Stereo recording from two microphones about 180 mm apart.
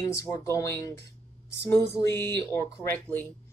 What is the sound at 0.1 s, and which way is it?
Speech, 15° left (ahead or behind).